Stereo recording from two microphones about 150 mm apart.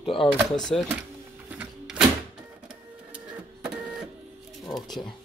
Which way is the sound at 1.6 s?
5° right (ahead or behind).